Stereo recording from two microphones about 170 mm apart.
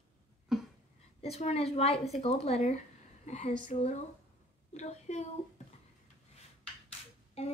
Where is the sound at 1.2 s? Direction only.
40° left (ahead or behind).